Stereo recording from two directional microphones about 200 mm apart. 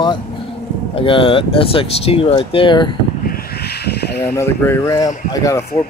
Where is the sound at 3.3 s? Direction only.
55° left (ahead or behind).